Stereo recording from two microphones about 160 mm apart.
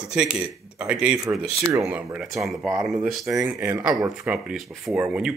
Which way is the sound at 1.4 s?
15° right (ahead or behind).